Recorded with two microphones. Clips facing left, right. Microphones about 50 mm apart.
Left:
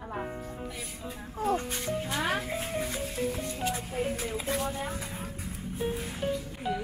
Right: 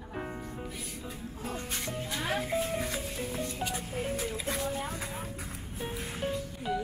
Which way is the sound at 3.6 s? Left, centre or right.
Left.